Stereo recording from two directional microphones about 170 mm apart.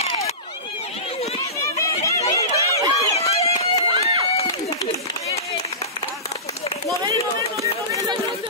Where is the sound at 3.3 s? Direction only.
35° left (ahead or behind).